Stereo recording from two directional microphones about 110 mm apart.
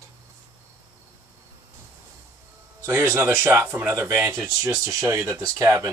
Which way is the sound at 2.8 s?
20° right (ahead or behind).